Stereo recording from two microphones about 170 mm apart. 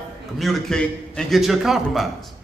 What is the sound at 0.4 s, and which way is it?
A man's voice, centre (ahead or behind).